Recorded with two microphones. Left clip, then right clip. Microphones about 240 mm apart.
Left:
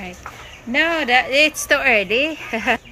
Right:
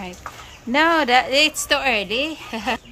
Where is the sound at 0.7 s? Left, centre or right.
Centre.